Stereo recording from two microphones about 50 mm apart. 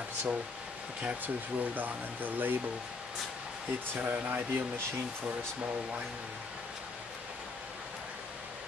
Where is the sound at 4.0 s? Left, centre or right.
Right.